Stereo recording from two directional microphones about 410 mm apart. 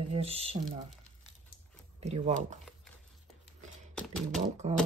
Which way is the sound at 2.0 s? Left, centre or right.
Centre.